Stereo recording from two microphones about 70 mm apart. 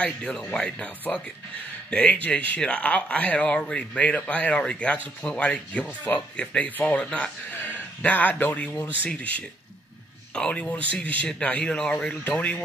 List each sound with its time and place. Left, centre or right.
0.0 s speech: centre
10.3 s speech: centre